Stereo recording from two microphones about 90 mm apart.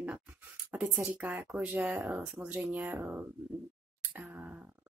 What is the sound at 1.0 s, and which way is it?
Speech, 15° right (ahead or behind).